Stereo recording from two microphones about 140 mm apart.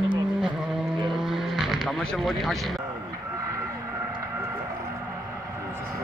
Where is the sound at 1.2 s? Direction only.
Centre (ahead or behind).